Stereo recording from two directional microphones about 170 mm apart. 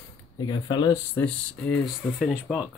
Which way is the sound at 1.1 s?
5° left (ahead or behind).